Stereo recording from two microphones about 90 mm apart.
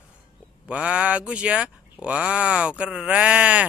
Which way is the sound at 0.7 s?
15° right (ahead or behind).